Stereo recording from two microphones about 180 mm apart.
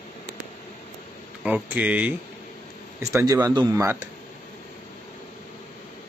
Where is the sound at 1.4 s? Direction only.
5° right (ahead or behind).